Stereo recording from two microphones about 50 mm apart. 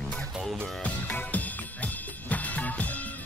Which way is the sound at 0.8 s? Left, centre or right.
Left.